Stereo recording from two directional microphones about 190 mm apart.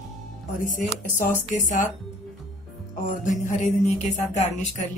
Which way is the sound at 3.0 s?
45° left (ahead or behind).